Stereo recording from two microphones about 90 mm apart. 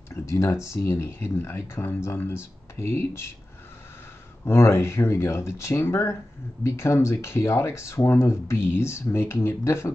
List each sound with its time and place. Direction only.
0.1 s speech: 35° left (ahead or behind)
4.5 s speech: 30° left (ahead or behind)